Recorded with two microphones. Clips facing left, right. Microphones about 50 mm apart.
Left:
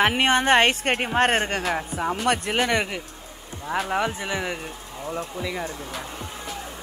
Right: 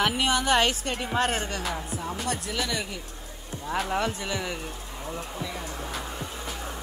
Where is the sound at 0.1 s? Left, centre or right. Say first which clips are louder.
Left 5 dB; left.